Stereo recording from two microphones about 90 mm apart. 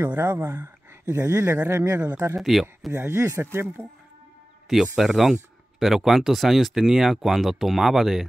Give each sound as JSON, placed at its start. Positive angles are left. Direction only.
{"t": 0.0, "sound": "speech", "side_deg": -25}
{"t": 1.0, "sound": "speech", "side_deg": -30}
{"t": 2.3, "sound": "speech", "side_deg": 0}
{"t": 2.9, "sound": "speech", "side_deg": -30}
{"t": 3.8, "sound": "speech", "side_deg": 15}
{"t": 4.9, "sound": "speech", "side_deg": 0}